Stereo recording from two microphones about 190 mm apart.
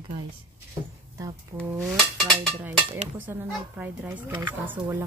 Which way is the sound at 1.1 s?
20° right (ahead or behind).